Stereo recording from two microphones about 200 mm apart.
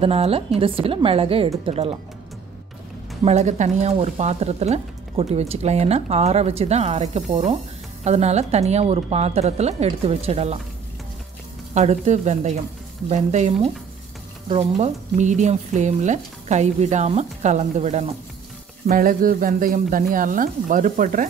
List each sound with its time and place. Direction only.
0.0 s a woman's voice: 30° right (ahead or behind)
3.3 s speech: 35° right (ahead or behind)
11.7 s speech: 35° right (ahead or behind)
18.9 s speech: 45° right (ahead or behind)